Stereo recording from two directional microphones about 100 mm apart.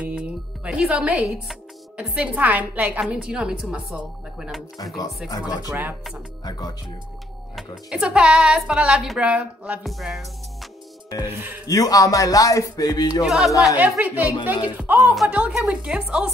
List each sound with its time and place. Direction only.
0.0 s music: 10° right (ahead or behind)
2.1 s a woman's voice: 15° right (ahead or behind)
5.7 s speech: 20° right (ahead or behind)
6.4 s speech: 40° left (ahead or behind)
7.5 s a woman's voice: 10° right (ahead or behind)
9.8 s music: centre (ahead or behind)
11.2 s speech: 20° right (ahead or behind)
11.6 s speech: 40° left (ahead or behind)
13.2 s music: 5° right (ahead or behind)
13.7 s a woman's voice: 15° right (ahead or behind)